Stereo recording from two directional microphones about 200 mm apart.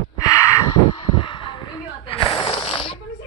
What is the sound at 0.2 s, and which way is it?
Gasp, 15° left (ahead or behind).